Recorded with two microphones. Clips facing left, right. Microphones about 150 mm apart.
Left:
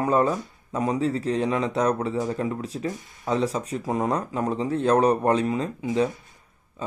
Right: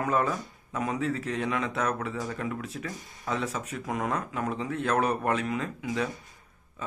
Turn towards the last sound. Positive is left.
turn(degrees=30)  # may be behind; listen again after turning